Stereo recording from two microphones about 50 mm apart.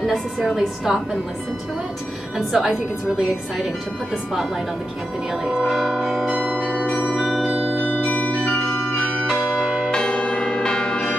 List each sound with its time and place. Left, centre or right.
0.6 s a woman's voice: centre
2.3 s a woman's voice: centre
5.3 s a woman's voice: centre
5.7 s music: centre
6.4 s change ringing: centre
6.8 s bell: left
7.3 s music: centre
8.0 s marimba: left
9.4 s change ringing: centre
9.8 s church bell: centre